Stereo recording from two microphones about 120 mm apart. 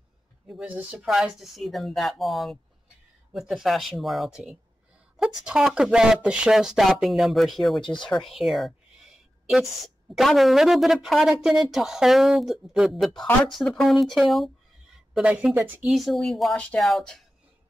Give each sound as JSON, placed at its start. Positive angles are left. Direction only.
{"t": 0.5, "sound": "a woman's voice", "side_deg": -5}
{"t": 15.9, "sound": "a woman's voice", "side_deg": 0}